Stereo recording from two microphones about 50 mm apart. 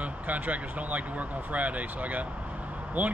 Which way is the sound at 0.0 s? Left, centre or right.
Right.